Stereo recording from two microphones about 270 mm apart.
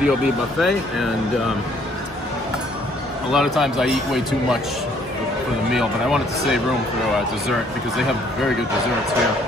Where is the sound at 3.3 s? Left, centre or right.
Centre.